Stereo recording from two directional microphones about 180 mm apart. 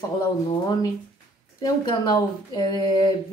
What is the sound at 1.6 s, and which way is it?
Speech, 25° left (ahead or behind).